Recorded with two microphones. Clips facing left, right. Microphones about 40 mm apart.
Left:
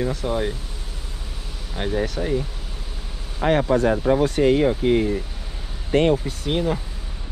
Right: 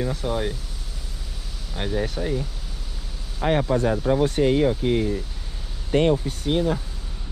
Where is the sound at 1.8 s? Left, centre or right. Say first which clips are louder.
Left 2 dB; left.